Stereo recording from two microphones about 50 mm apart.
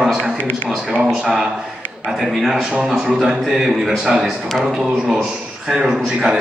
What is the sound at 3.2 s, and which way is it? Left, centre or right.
A man's voice, centre.